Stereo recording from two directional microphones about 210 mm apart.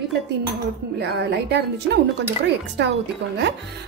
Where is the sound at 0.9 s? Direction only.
50° right (ahead or behind).